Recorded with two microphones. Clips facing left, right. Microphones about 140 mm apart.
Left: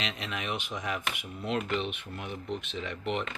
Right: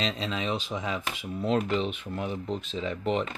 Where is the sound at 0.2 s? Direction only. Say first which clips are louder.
Right 5 dB; 25° right (ahead or behind).